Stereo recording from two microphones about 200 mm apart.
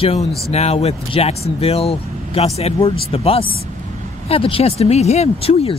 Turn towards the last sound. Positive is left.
turn(degrees=30)  # may be behind; listen again after turning